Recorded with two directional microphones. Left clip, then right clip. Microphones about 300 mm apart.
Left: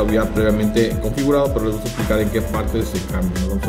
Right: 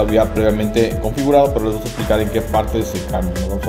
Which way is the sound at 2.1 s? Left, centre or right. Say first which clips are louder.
Right 4 dB; right.